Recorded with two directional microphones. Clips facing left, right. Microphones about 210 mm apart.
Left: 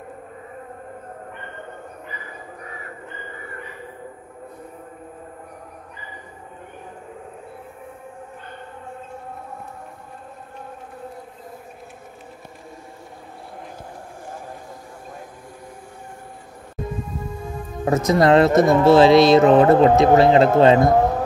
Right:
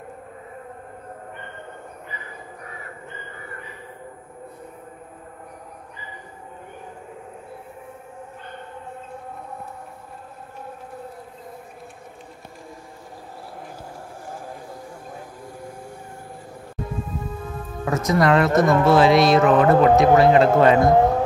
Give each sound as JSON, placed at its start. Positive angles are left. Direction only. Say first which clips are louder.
{"t": 17.8, "sound": "speech", "louder": "left 3 dB", "side_deg": 25}